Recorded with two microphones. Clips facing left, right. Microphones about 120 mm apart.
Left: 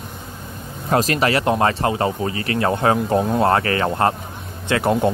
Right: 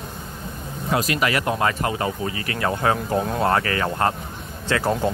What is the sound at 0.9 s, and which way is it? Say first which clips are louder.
Speech: left 4 dB; 35° left (ahead or behind).